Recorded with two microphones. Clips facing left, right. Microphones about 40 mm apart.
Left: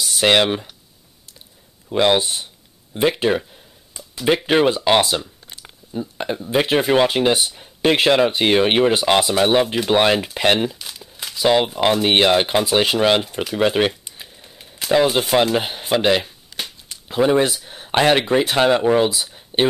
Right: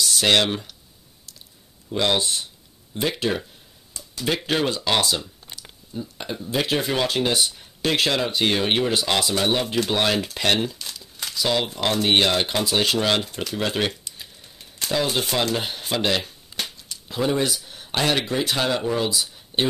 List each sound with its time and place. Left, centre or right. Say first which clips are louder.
0.0 s speech: left 3 dB; centre
1.9 s speech: left 5 dB; left
3.9 s a sound: left 7 dB; left
4.5 s speech: left 7 dB; left
16.9 s speech: left 7 dB; left